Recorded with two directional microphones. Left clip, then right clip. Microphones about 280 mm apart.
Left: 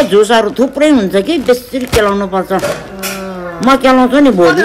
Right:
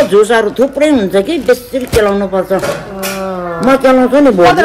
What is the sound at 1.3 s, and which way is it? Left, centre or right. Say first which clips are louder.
Speech: left 2 dB; centre.